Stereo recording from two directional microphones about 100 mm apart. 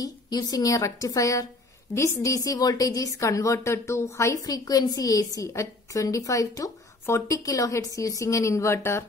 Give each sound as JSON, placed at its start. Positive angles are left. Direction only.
{"t": 0.0, "sound": "a woman's voice", "side_deg": 40}